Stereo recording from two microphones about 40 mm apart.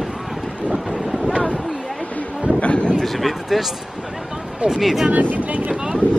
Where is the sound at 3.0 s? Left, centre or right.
Centre.